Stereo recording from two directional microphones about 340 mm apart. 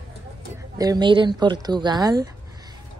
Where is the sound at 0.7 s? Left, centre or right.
Centre.